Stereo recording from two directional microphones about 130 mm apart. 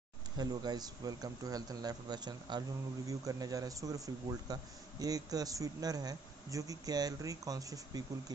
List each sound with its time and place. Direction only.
0.4 s speech: 30° right (ahead or behind)